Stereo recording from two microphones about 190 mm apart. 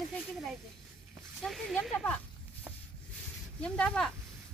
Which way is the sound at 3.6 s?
5° left (ahead or behind).